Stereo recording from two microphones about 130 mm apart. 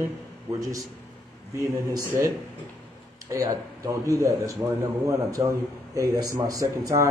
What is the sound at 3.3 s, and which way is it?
Speech, 25° right (ahead or behind).